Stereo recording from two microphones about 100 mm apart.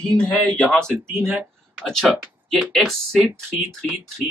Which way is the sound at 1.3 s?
10° right (ahead or behind).